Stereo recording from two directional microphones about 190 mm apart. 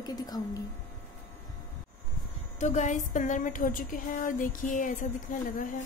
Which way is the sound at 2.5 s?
40° left (ahead or behind).